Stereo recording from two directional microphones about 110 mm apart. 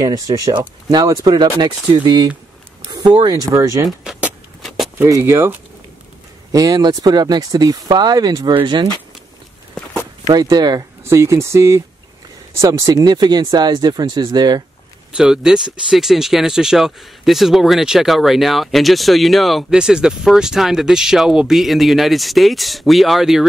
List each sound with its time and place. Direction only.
0.0 s speech: 30° right (ahead or behind)
4.0 s rodents: 5° right (ahead or behind)
4.9 s speech: 25° right (ahead or behind)
6.5 s speech: 35° right (ahead or behind)
10.2 s speech: 35° right (ahead or behind)
11.1 s speech: 25° right (ahead or behind)
15.1 s speech: 5° right (ahead or behind)